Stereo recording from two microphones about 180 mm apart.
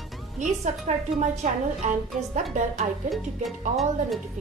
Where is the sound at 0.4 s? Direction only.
40° right (ahead or behind).